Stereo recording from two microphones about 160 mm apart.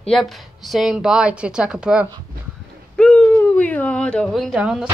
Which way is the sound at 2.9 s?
5° left (ahead or behind).